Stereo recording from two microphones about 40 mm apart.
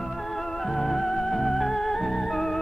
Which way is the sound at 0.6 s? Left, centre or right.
Centre.